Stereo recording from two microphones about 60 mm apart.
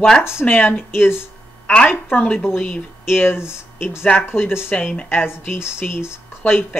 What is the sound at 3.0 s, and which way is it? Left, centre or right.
Speech, left.